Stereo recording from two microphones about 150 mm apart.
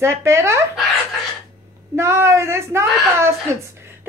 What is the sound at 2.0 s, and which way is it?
A woman's voice, 20° right (ahead or behind).